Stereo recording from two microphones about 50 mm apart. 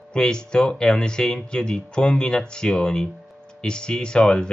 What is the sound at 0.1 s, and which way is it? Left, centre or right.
Speech, centre.